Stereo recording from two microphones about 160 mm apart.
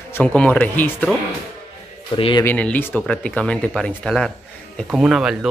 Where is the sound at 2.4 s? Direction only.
10° left (ahead or behind).